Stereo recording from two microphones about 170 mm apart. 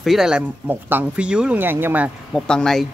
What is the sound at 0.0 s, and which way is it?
Speech, centre (ahead or behind).